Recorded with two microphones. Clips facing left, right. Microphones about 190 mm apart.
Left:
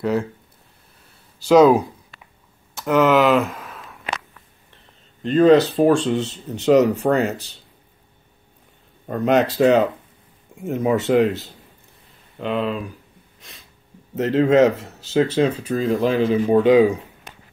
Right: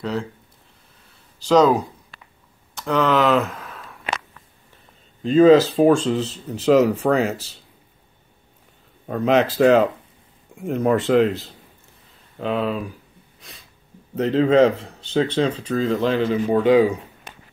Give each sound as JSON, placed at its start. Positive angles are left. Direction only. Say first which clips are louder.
{"t": 0.0, "sound": "speech", "louder": "left 5 dB", "side_deg": 10}
{"t": 1.5, "sound": "speech", "louder": "left 3 dB", "side_deg": 10}
{"t": 5.2, "sound": "speech", "louder": "right 1 dB", "side_deg": 0}
{"t": 9.0, "sound": "speech", "louder": "even", "side_deg": 0}
{"t": 13.4, "sound": "a sound", "louder": "right 1 dB", "side_deg": 0}
{"t": 14.1, "sound": "speech", "louder": "even", "side_deg": 0}
{"t": 16.5, "sound": "speech", "louder": "left 2 dB", "side_deg": 15}